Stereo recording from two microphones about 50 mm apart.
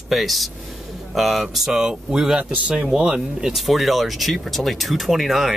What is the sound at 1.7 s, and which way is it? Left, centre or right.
A man's voice, centre.